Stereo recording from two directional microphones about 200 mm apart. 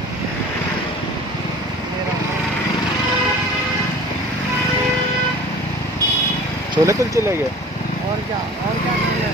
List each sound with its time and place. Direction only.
6.7 s speech: 15° right (ahead or behind)